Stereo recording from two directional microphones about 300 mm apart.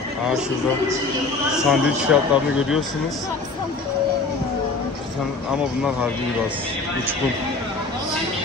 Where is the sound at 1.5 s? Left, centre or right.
Centre.